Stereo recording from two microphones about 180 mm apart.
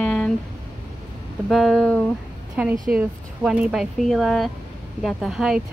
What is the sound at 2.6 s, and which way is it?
Speech, 5° right (ahead or behind).